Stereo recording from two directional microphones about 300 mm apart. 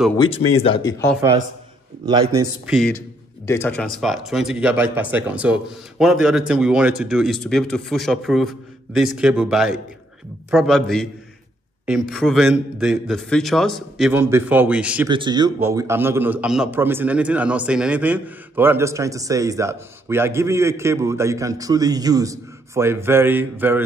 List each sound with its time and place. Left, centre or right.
0.2 s speech: centre
2.0 s a man's voice: centre
2.6 s speech: centre
15.0 s a man's voice: centre